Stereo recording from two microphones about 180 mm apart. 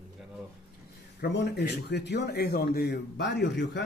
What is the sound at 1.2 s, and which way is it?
Speech, 65° left (ahead or behind).